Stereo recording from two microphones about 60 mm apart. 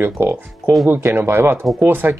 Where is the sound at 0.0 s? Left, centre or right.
Right.